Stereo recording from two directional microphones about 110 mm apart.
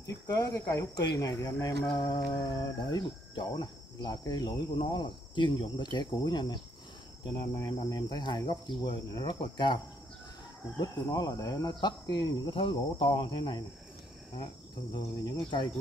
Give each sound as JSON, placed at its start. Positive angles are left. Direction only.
{"t": 0.3, "sound": "cricket", "side_deg": 30}
{"t": 1.9, "sound": "cricket", "side_deg": 45}
{"t": 10.8, "sound": "cricket", "side_deg": 40}